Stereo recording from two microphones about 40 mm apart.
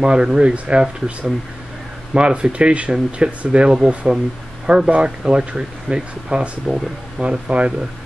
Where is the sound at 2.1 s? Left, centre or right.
Right.